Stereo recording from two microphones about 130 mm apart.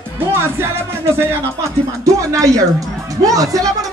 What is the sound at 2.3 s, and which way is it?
Speech, 25° right (ahead or behind).